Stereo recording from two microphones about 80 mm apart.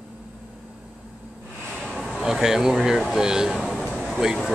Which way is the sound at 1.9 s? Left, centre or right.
Centre.